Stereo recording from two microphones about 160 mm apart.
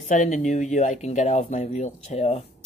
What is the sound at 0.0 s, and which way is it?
Speech, 50° left (ahead or behind).